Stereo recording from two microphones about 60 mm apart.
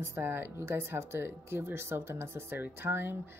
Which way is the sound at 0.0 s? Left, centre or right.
Right.